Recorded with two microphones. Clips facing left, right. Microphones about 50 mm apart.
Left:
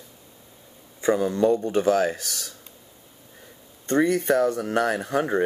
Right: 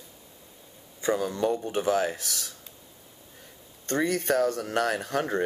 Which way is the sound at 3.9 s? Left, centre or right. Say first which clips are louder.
Left 5 dB; left.